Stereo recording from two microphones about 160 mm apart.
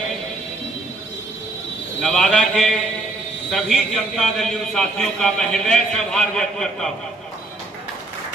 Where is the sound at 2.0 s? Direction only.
Centre (ahead or behind).